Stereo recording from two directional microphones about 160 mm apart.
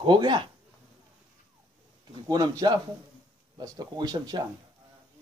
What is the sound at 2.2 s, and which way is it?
Speech, 25° right (ahead or behind).